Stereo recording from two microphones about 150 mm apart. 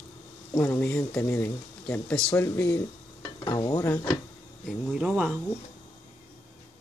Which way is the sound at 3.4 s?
25° left (ahead or behind).